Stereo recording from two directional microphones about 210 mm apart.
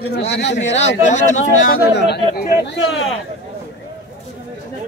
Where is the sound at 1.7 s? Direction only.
50° left (ahead or behind).